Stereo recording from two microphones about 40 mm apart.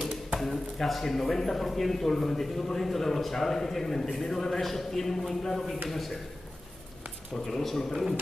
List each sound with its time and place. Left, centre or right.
0.4 s a man's voice: centre
7.3 s speech: centre